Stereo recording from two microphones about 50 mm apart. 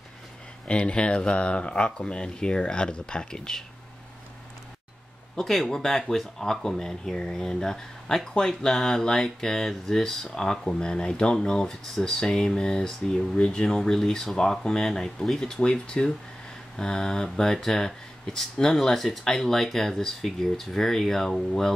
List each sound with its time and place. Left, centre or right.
0.7 s speech: left
5.3 s speech: centre